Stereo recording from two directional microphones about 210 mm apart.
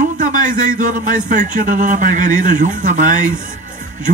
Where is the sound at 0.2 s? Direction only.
35° right (ahead or behind).